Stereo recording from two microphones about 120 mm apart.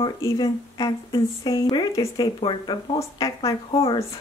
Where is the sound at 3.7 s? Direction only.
50° left (ahead or behind).